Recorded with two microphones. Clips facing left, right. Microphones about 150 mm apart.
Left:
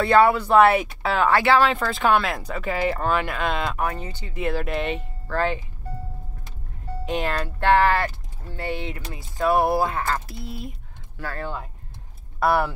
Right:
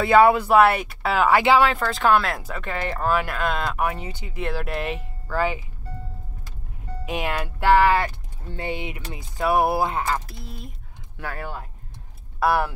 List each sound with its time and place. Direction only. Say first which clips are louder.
0.1 s speech: right 2 dB; 10° right (ahead or behind)
1.3 s speech: right 2 dB; 15° right (ahead or behind)
1.6 s speech: even; centre (ahead or behind)
3.8 s speech: right 1 dB; 15° right (ahead or behind)
4.4 s speech: left 2 dB; centre (ahead or behind)
7.1 s speech: left 1 dB; 5° right (ahead or behind)
10.2 s speech: left 5 dB; 5° left (ahead or behind)
11.1 s speech: left 1 dB; 15° right (ahead or behind)